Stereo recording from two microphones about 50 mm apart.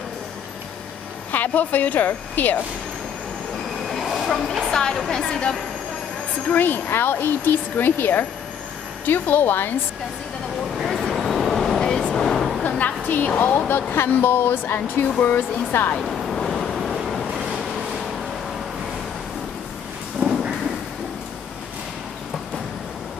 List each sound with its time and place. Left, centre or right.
1.3 s a woman's voice: left
3.8 s speech: centre
5.3 s speech: centre
6.5 s speech: left
10.8 s a sound: centre
12.6 s a sound: left
13.4 s speech: left
16.0 s vehicle: centre
20.2 s a sound: centre